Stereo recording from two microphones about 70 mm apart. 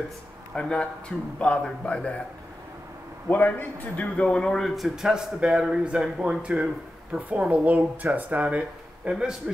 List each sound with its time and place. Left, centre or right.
0.6 s a man's voice: centre
3.3 s a man's voice: left
4.0 s a man's voice: centre
9.1 s a man's voice: centre